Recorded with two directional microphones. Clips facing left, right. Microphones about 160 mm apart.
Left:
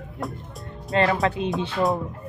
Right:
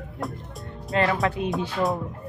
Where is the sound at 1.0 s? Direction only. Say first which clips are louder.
Left 2 dB; 25° left (ahead or behind).